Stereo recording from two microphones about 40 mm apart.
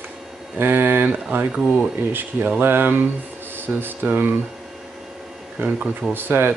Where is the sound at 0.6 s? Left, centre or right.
Right.